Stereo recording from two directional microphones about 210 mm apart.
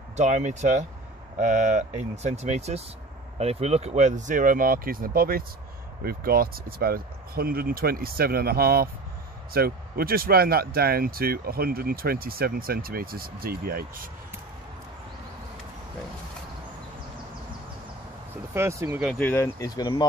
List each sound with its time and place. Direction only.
0.2 s speech: 35° right (ahead or behind)
18.5 s speech: 10° right (ahead or behind)
18.9 s speech: centre (ahead or behind); by 20.1 s 20° left (ahead or behind)